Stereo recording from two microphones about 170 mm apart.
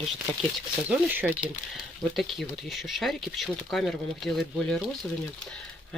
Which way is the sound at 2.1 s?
Centre (ahead or behind).